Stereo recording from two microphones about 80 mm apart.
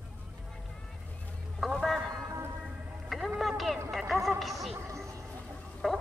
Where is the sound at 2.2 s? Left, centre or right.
Right.